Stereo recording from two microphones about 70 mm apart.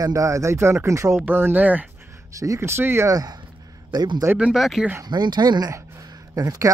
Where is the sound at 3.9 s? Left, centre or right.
Right.